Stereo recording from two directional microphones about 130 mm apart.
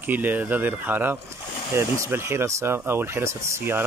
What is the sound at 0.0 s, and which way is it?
Speech, 15° right (ahead or behind).